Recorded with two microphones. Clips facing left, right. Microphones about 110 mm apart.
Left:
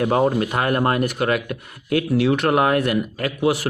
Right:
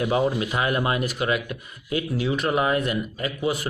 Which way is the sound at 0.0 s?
55° left (ahead or behind).